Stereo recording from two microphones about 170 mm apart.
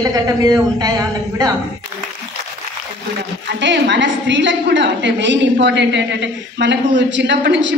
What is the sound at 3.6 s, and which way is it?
A woman's voice, 90° right.